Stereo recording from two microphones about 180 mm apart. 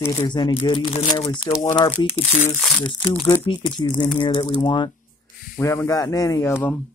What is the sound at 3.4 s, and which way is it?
Speech, 30° left (ahead or behind).